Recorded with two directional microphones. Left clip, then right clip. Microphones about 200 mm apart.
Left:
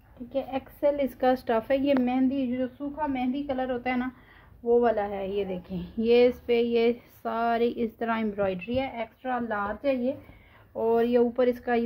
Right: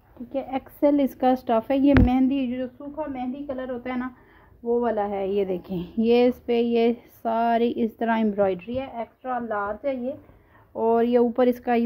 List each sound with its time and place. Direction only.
0.3 s a woman's voice: 40° right (ahead or behind)
2.0 s a woman's voice: 45° right (ahead or behind); by 9.0 s 30° right (ahead or behind)
9.2 s a woman's voice: 15° right (ahead or behind)
10.8 s a woman's voice: 40° right (ahead or behind)